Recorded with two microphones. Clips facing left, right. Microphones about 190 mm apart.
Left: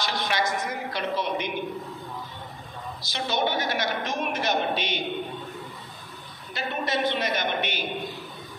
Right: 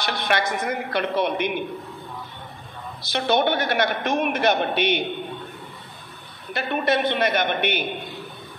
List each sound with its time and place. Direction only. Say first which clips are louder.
0.0 s a man's voice: right 3 dB; 60° right (ahead or behind)
3.0 s a man's voice: right 6 dB; 60° right (ahead or behind)
6.5 s a man's voice: right 6 dB; 60° right (ahead or behind)